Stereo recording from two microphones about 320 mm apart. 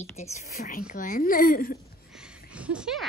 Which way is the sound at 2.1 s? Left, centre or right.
Centre.